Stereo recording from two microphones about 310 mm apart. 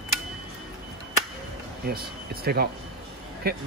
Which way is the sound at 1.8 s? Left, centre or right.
Right.